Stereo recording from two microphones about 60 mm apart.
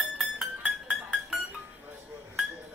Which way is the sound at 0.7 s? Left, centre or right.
Centre.